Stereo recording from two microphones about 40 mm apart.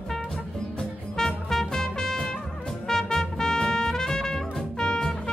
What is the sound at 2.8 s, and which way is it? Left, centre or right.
Trumpet, centre.